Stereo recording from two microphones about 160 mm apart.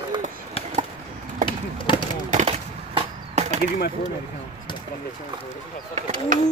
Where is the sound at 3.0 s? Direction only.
40° right (ahead or behind).